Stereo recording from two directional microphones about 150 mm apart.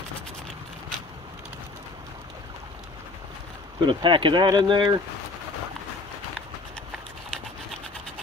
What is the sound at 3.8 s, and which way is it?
Speech, 35° right (ahead or behind).